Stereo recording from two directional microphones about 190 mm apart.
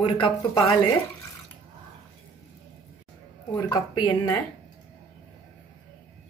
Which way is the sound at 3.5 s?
20° left (ahead or behind).